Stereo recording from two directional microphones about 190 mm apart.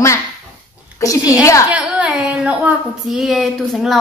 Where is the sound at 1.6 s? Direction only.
5° right (ahead or behind).